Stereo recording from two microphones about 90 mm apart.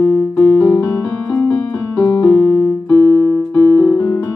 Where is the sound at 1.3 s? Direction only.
25° left (ahead or behind).